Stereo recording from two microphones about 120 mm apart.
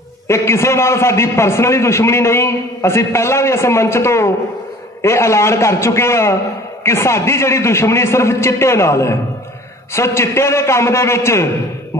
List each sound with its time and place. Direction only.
0.3 s a man's voice: 25° left (ahead or behind)